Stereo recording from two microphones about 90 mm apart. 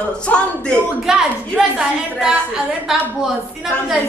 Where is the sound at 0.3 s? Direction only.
20° left (ahead or behind).